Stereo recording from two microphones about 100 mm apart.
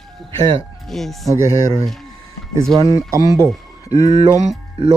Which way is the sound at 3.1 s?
35° right (ahead or behind).